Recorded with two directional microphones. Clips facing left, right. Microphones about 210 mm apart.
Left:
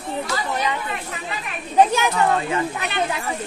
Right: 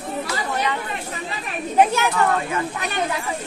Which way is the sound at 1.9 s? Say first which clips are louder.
Left 1 dB; 15° left (ahead or behind).